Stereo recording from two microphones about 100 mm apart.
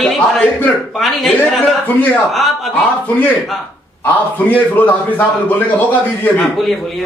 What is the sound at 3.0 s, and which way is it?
A man's voice, 15° left (ahead or behind).